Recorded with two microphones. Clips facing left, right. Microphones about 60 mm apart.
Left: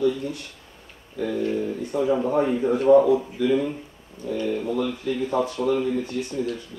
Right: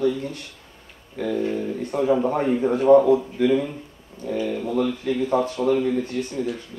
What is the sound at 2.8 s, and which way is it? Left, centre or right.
Speech, right.